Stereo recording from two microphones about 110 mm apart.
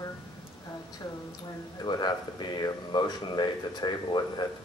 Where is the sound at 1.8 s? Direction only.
45° left (ahead or behind).